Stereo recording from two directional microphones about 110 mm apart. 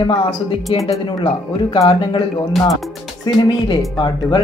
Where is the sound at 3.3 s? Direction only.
40° left (ahead or behind).